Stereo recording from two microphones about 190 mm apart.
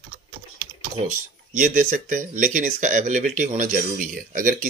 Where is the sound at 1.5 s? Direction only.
45° right (ahead or behind).